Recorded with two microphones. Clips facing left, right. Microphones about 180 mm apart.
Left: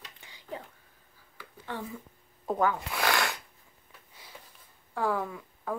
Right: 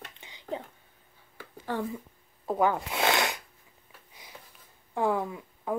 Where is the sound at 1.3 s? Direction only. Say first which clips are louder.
Right 5 dB; 45° right (ahead or behind).